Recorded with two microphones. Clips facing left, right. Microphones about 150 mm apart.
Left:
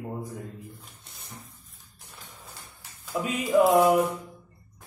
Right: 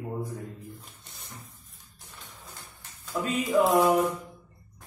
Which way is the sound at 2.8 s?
15° left (ahead or behind).